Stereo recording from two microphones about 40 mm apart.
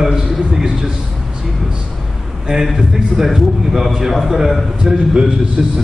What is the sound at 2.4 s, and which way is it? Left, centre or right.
Speech, centre.